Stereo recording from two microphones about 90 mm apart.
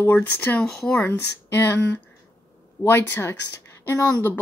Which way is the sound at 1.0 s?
25° left (ahead or behind).